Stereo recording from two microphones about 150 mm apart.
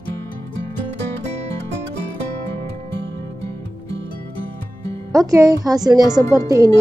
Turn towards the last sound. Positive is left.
turn(degrees=-25)  # may be behind; listen again after turning